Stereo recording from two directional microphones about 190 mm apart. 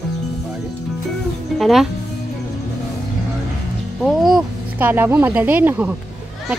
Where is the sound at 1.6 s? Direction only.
Centre (ahead or behind).